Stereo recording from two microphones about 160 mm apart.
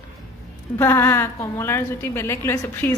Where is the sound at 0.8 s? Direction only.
15° left (ahead or behind).